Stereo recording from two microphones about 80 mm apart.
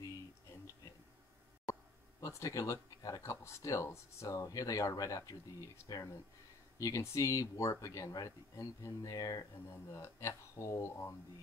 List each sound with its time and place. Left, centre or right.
2.1 s speech: left